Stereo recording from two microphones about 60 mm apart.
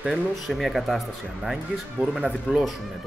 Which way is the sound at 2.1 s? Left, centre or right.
Centre.